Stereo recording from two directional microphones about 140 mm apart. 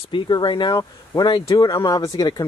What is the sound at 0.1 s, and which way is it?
Speech, 35° left (ahead or behind).